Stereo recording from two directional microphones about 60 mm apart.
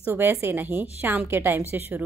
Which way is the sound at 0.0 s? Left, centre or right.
Right.